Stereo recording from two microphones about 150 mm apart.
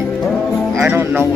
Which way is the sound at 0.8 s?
15° right (ahead or behind).